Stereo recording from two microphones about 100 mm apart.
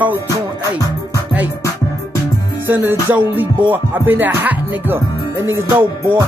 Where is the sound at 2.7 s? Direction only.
20° right (ahead or behind).